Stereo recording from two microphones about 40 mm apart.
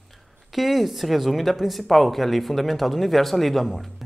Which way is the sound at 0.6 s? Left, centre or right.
Centre.